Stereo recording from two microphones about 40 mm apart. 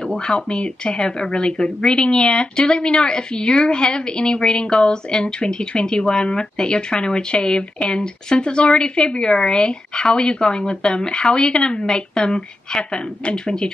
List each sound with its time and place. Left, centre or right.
0.3 s speech: left